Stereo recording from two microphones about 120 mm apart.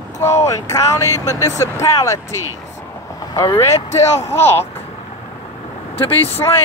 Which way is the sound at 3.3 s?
35° left (ahead or behind).